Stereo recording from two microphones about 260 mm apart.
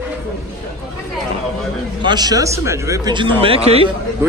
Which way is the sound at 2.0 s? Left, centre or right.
Centre.